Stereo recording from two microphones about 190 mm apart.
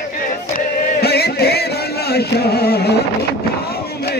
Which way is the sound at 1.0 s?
55° left (ahead or behind).